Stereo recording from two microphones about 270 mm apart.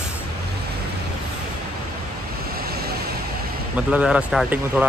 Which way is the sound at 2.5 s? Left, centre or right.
Right.